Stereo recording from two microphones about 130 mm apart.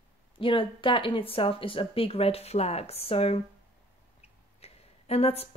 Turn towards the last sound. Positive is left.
turn(degrees=50)  # may be behind; listen again after turning